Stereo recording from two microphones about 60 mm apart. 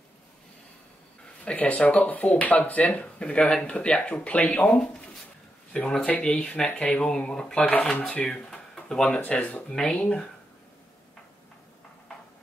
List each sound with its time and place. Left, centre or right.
1.4 s speech: left
9.2 s speech: left
9.7 s speech: centre
9.9 s speech: left